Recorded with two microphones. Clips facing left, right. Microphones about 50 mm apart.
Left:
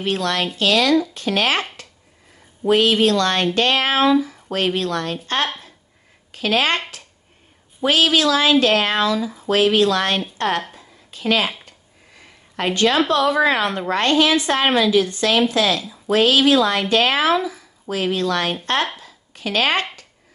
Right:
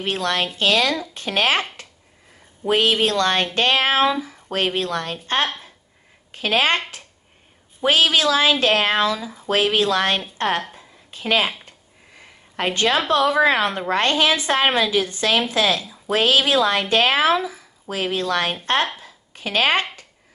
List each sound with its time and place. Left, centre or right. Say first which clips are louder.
0.0 s a woman's voice: left 1 dB; right
2.7 s a woman's voice: left 3 dB; right
7.8 s a woman's voice: left 1 dB; right
10.7 s a sound: even; right
13.1 s a woman's voice: even; right
18.9 s a sound: even; right